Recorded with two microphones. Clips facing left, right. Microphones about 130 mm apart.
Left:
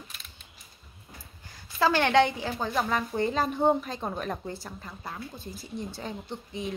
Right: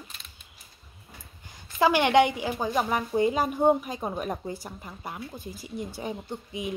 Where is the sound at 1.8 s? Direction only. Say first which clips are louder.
Right 2 dB; 15° right (ahead or behind).